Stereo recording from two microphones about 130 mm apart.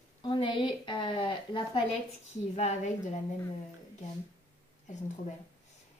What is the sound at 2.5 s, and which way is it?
Speech, 60° left (ahead or behind).